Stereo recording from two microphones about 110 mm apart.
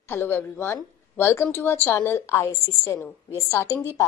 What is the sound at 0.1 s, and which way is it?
A woman's voice, 15° left (ahead or behind).